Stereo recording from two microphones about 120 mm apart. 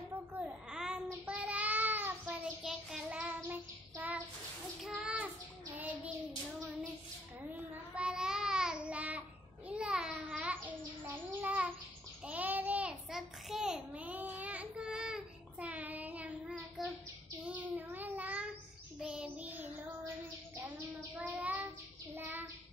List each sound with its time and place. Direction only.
0.4 s a sound: 5° right (ahead or behind)
1.2 s child singing: 10° right (ahead or behind)
2.6 s child singing: 5° right (ahead or behind)
7.5 s child singing: 10° right (ahead or behind)
9.7 s a sound: 10° right (ahead or behind)
17.5 s child singing: 15° right (ahead or behind)